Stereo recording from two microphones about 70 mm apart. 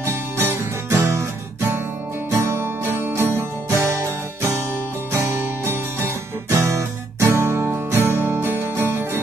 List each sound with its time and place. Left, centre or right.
0.0 s music: right
2.3 s music: right